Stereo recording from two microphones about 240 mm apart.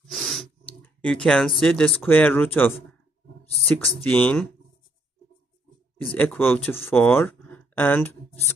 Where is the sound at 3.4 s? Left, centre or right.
Left.